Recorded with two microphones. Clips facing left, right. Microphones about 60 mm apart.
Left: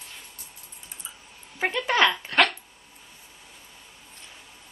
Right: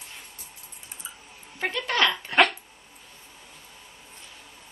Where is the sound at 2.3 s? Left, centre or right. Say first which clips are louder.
Right 3 dB; centre.